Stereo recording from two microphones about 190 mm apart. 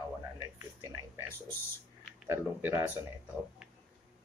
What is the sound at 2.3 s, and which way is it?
Speech, 10° right (ahead or behind).